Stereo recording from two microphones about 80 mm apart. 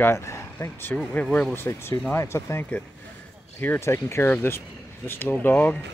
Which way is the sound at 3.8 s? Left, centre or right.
Left.